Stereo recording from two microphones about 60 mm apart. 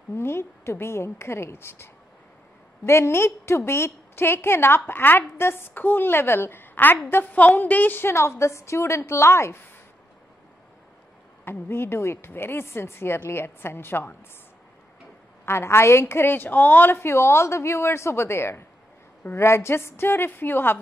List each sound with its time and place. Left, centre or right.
0.1 s a woman's voice: left
7.3 s a woman's voice: left
8.1 s a woman's voice: left
11.4 s a woman's voice: left
15.4 s a woman's voice: left